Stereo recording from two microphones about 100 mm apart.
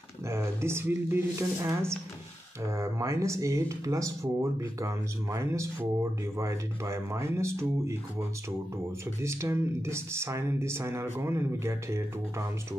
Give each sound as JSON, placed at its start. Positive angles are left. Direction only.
{"t": 0.3, "sound": "speech", "side_deg": -25}